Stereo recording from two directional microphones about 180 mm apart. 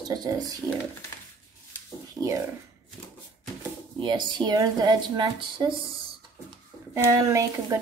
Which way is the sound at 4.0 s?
25° right (ahead or behind).